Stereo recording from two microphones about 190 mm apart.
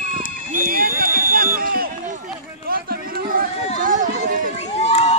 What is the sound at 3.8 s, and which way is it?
Run, 45° right (ahead or behind).